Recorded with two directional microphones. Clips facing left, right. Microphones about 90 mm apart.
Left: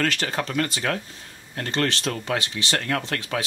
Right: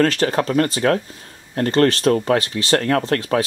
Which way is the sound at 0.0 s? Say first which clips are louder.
Right 8 dB; 40° right (ahead or behind).